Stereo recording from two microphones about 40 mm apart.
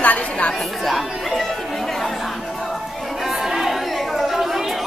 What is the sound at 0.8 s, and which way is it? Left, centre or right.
Chatter, centre.